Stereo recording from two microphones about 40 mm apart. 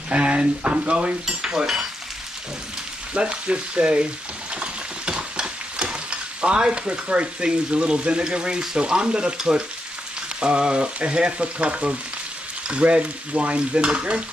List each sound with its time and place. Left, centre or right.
0.1 s speech: right
1.2 s stir: centre
3.2 s speech: right
5.1 s stir: right
8.3 s speech: right
12.6 s stir: right